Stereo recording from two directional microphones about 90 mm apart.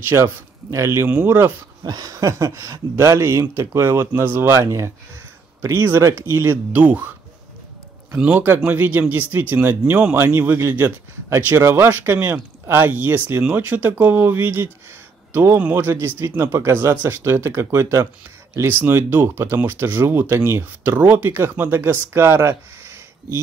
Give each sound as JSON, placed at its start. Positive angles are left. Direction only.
{"t": 0.1, "sound": "speech", "side_deg": -35}
{"t": 1.8, "sound": "speech", "side_deg": -50}
{"t": 6.7, "sound": "speech", "side_deg": -15}
{"t": 8.1, "sound": "speech", "side_deg": -15}